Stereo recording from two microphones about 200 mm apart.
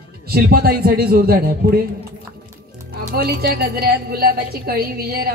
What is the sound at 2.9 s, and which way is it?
A man's voice, 50° right (ahead or behind).